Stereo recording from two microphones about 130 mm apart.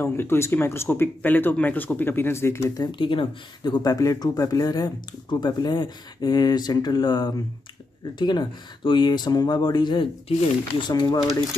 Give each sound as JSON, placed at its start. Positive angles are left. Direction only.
{"t": 0.0, "sound": "speech", "side_deg": 20}
{"t": 2.8, "sound": "speech", "side_deg": 40}